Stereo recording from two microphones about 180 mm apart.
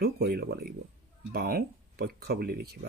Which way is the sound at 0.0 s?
60° right (ahead or behind).